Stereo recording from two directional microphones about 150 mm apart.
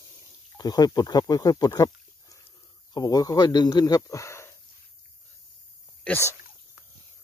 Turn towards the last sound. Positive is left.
turn(degrees=15)  # may be behind; listen again after turning